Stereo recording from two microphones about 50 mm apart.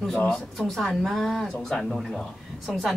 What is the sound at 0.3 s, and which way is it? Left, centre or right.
Speech, centre.